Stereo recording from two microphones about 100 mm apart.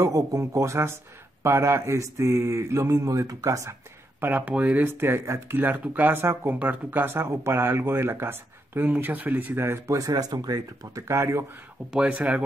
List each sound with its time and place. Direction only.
0.0 s speech: 35° right (ahead or behind)
4.2 s speech: 15° right (ahead or behind)
9.9 s speech: 35° right (ahead or behind)
11.9 s speech: 10° right (ahead or behind)